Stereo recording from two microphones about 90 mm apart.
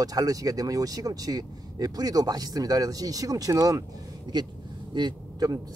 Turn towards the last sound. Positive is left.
turn(degrees=-55)  # may be behind; listen again after turning